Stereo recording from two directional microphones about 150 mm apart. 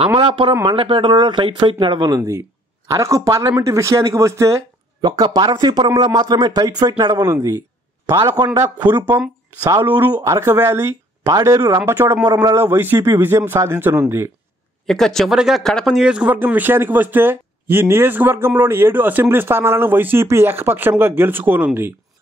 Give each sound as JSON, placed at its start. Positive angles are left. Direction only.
{"t": 0.2, "sound": "speech", "side_deg": -35}
{"t": 14.9, "sound": "speech", "side_deg": 0}